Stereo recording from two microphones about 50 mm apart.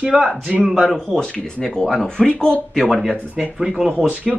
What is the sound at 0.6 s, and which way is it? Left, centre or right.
Speech, centre.